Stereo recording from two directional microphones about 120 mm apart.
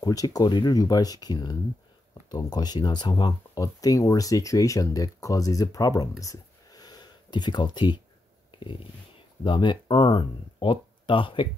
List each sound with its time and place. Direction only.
0.0 s speech: 30° left (ahead or behind)